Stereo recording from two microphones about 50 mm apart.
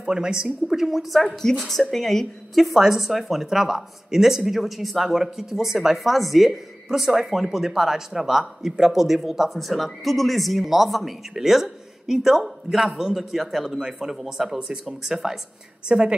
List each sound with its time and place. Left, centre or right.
0.0 s a woman's voice: centre
0.7 s a woman's voice: centre